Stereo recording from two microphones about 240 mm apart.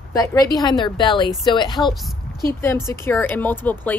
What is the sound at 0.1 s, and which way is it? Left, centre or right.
Speech, centre.